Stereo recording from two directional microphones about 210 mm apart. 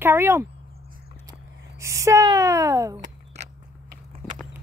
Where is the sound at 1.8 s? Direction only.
15° right (ahead or behind).